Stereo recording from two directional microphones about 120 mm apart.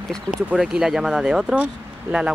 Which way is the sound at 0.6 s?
5° right (ahead or behind).